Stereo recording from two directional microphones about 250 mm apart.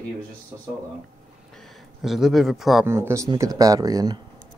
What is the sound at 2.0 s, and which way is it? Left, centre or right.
Speech, centre.